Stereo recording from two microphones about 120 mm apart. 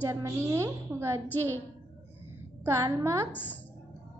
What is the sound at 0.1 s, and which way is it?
A woman's voice, 20° right (ahead or behind).